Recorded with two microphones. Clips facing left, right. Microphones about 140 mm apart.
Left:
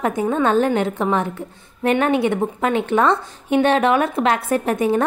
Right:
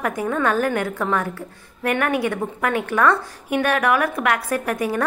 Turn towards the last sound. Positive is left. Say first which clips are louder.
# left 4 dB
turn(degrees=25)  # may be behind; listen again after turning